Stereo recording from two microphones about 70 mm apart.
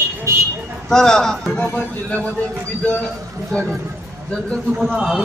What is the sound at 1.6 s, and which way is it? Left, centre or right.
Speech, left.